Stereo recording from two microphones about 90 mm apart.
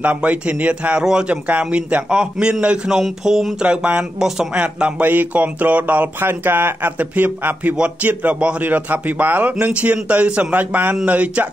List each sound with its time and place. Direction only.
0.0 s a man's voice: 15° right (ahead or behind)